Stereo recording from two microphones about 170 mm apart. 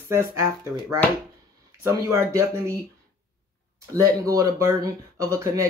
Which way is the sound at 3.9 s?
20° right (ahead or behind).